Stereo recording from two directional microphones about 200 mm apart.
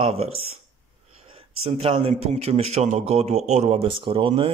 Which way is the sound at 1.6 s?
30° right (ahead or behind).